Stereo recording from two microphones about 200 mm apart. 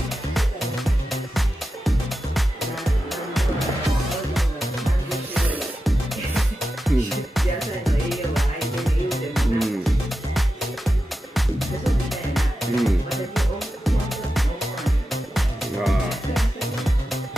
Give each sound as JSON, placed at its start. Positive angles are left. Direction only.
{"t": 0.3, "sound": "music", "side_deg": 0}